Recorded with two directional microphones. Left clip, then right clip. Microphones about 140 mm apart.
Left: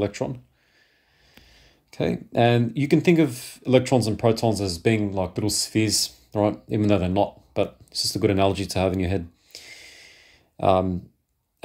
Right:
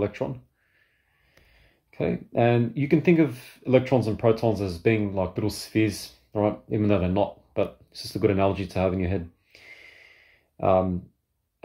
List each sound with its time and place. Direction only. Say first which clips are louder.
0.0 s speech: left 2 dB; 30° left (ahead or behind)
1.3 s speech: left 6 dB; 40° left (ahead or behind)